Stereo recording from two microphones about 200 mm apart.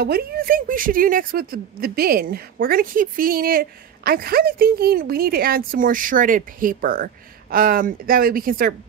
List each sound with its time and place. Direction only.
0.0 s speech: 50° right (ahead or behind)